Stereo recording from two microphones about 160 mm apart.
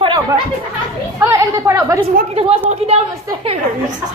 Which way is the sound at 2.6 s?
40° right (ahead or behind).